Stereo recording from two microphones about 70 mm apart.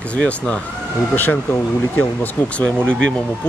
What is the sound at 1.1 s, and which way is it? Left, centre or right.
Speech, left.